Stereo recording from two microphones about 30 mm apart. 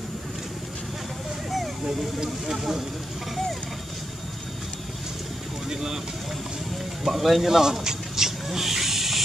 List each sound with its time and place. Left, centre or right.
1.9 s speech: right
2.4 s speech: centre
5.7 s speech: centre
7.1 s speech: centre
7.4 s speech: centre
8.5 s snake: centre